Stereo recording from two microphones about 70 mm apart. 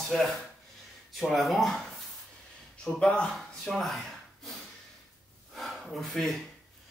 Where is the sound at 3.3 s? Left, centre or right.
Centre.